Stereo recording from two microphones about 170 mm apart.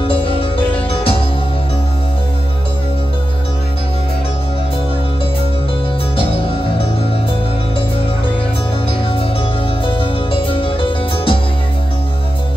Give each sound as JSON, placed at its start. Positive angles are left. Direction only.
{"t": 0.1, "sound": "music", "side_deg": 35}
{"t": 6.1, "sound": "music", "side_deg": 30}
{"t": 10.3, "sound": "harpsichord", "side_deg": 30}